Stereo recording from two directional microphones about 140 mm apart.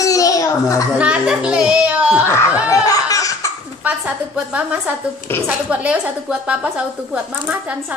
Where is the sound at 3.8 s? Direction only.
10° right (ahead or behind).